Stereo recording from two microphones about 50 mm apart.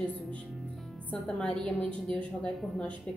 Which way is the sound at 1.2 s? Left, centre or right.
Centre.